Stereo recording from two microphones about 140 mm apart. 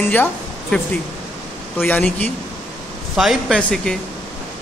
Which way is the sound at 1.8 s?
15° left (ahead or behind).